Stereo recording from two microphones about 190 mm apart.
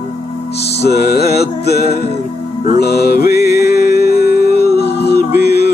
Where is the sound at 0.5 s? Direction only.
60° left (ahead or behind).